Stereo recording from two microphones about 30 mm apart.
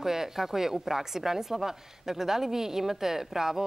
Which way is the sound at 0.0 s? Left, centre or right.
Centre.